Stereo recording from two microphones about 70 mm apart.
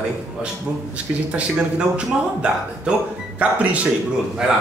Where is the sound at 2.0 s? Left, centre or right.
Centre.